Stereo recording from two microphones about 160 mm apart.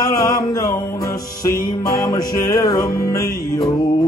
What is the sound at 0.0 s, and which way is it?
Music, 20° left (ahead or behind).